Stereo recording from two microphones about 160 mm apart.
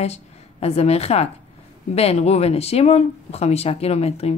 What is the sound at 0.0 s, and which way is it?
Speech, 40° left (ahead or behind).